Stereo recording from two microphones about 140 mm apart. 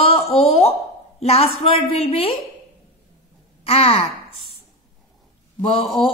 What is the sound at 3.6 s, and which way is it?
Gasp, 45° left (ahead or behind).